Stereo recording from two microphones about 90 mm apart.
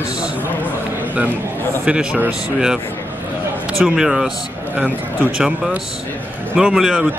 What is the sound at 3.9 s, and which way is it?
Speech, 5° right (ahead or behind).